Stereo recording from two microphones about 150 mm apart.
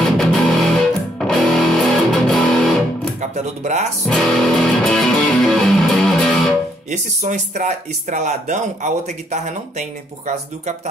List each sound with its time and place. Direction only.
0.0 s music: centre (ahead or behind)
3.2 s speech: 50° right (ahead or behind)
4.0 s music: 5° left (ahead or behind)
6.9 s speech: 50° right (ahead or behind)